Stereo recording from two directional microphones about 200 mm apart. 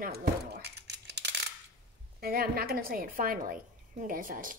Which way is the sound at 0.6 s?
55° right (ahead or behind).